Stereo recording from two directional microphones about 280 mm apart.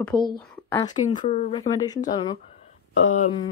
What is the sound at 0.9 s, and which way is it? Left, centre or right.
Speech, left.